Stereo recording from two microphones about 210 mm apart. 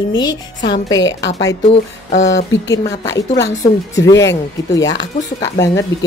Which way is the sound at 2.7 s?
15° left (ahead or behind).